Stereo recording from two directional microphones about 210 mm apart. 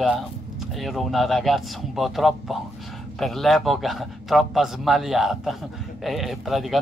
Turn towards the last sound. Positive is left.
turn(degrees=0)  # may be behind; listen again after turning